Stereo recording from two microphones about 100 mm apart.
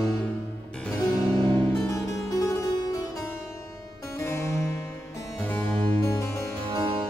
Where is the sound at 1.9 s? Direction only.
35° left (ahead or behind).